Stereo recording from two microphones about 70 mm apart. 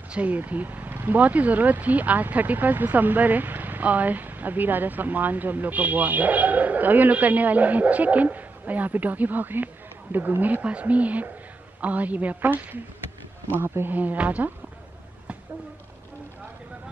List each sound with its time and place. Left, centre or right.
0.1 s speech: right